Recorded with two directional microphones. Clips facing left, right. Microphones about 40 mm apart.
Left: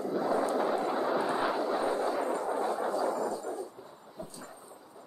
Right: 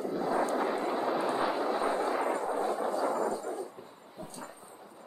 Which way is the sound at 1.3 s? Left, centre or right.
Right.